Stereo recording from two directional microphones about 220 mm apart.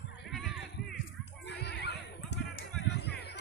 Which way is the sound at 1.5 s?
50° left (ahead or behind).